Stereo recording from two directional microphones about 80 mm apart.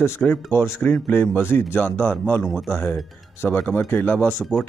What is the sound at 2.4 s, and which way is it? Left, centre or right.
Speech, centre.